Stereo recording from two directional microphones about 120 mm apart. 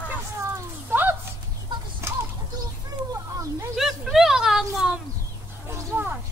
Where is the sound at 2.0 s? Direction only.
20° right (ahead or behind).